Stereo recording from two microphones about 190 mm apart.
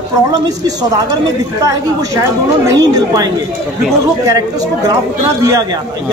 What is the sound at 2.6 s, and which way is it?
Speech, 20° right (ahead or behind).